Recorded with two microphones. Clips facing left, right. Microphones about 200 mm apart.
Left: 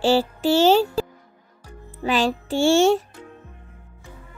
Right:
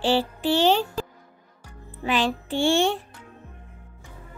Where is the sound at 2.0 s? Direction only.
40° left (ahead or behind).